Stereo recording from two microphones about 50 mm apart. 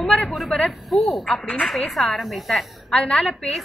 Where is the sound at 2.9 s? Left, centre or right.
Left.